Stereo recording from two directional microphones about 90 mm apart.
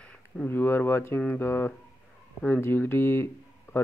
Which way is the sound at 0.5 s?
25° left (ahead or behind).